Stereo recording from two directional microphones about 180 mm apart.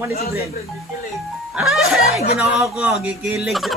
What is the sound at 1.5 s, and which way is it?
Speech, centre (ahead or behind).